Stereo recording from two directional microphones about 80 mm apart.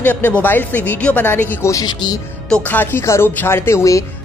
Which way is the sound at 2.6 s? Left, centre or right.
Left.